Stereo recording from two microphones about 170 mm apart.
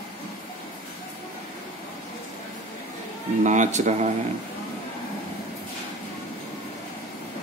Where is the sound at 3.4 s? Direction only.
45° right (ahead or behind).